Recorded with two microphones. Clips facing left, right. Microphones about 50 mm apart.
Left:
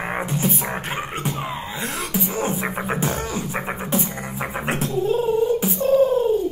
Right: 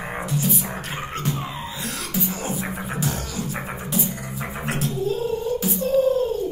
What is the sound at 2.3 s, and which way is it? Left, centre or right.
Beatboxing, left.